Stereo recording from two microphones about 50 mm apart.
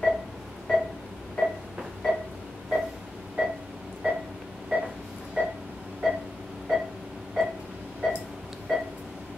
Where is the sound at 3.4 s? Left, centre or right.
Centre.